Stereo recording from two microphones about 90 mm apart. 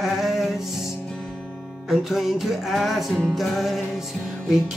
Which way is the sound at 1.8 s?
Centre (ahead or behind).